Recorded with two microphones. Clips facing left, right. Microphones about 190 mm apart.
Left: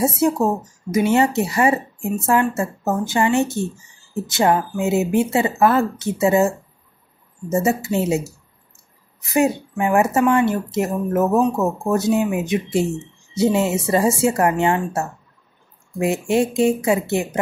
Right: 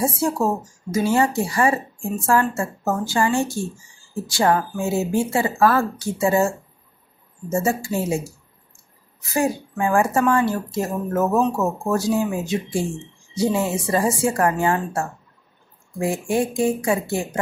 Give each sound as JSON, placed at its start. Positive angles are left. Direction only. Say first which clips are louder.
{"t": 0.0, "sound": "speech", "louder": "left 3 dB", "side_deg": 20}
{"t": 7.5, "sound": "speech", "louder": "left 3 dB", "side_deg": 20}
{"t": 16.0, "sound": "speech", "louder": "left 3 dB", "side_deg": 25}